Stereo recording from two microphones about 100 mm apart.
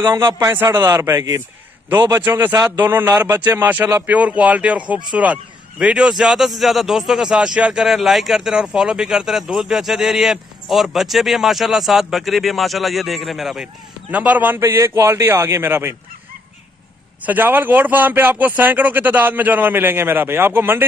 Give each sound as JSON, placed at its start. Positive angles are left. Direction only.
{"t": 0.4, "sound": "a man's voice", "side_deg": -20}
{"t": 14.1, "sound": "speech", "side_deg": -15}
{"t": 17.3, "sound": "speech", "side_deg": -20}